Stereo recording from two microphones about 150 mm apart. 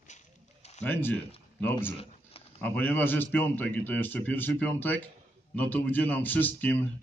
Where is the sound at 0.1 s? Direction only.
50° left (ahead or behind).